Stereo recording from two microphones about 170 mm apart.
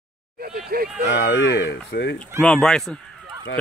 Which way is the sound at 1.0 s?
90° left.